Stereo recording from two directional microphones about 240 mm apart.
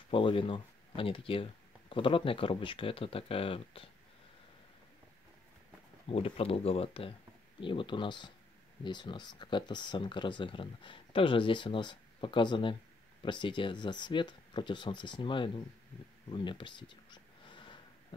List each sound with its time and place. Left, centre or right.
0.1 s speech: left
6.0 s speech: left
16.3 s a sound: centre